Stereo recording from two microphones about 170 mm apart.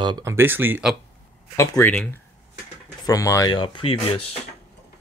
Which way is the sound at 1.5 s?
15° left (ahead or behind).